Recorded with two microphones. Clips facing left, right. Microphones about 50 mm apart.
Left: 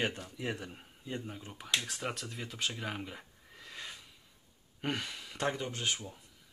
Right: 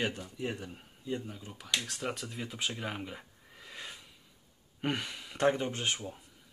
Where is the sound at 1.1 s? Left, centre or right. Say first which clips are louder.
Right 3 dB; left; by 5.4 s centre.